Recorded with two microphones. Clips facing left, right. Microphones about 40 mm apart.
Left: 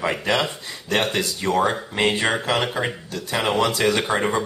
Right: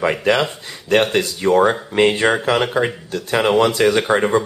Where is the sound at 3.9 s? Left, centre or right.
Centre.